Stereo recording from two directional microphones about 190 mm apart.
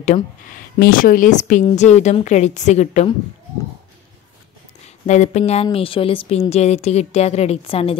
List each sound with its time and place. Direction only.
0.7 s a woman's voice: 50° left (ahead or behind)
4.8 s a woman's voice: 40° left (ahead or behind)